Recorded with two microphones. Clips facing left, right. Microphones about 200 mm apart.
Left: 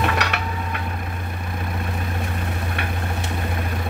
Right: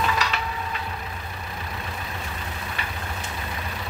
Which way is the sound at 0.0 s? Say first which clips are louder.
Left 3 dB; 65° left (ahead or behind).